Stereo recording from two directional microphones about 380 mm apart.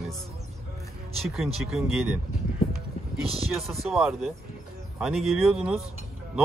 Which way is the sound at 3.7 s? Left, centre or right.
Centre.